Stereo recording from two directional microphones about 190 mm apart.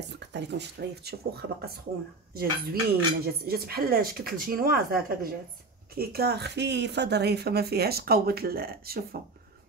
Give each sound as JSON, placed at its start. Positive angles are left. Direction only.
{"t": 0.1, "sound": "speech", "side_deg": -65}